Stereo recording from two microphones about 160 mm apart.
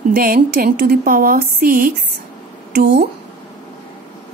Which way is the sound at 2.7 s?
80° right.